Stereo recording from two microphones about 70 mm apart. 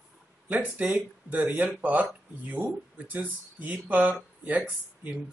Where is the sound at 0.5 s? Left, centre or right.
Right.